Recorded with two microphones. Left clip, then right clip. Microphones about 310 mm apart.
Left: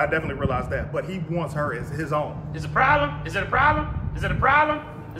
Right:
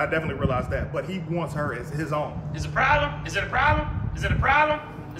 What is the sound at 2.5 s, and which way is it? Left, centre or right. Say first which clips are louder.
A woman's voice: left 2 dB; left.